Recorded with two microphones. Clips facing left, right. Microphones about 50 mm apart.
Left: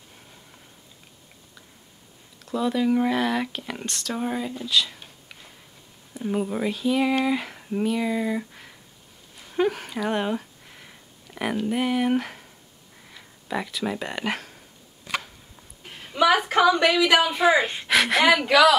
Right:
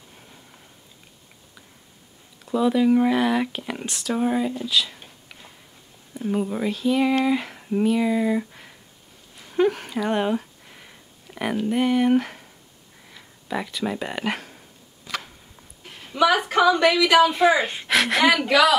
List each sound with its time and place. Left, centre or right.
2.4 s speech: centre
6.1 s speech: centre
9.5 s a sound: centre
13.1 s speech: centre
15.9 s a sound: centre
16.3 s a woman's voice: centre
17.3 s speech: centre